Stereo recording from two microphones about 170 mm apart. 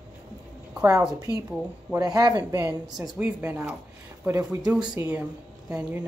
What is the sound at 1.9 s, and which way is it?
A woman's voice, 20° right (ahead or behind).